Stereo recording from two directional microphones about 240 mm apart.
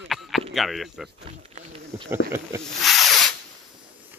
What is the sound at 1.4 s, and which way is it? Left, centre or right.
Wild animals, right.